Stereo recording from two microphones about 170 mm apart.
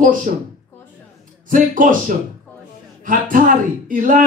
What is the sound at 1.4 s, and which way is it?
Speech, 50° right (ahead or behind).